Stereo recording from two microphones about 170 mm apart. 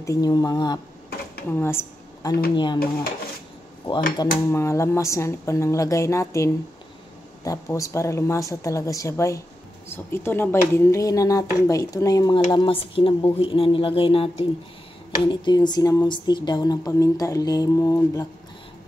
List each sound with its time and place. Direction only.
0.0 s a woman's voice: 20° left (ahead or behind)
2.5 s speech: 25° left (ahead or behind)
4.4 s speech: 15° left (ahead or behind)